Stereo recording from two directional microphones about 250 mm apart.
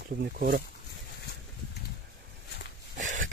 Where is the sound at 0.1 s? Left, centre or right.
Right.